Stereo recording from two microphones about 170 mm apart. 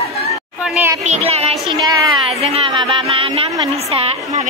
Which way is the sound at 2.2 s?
35° right (ahead or behind).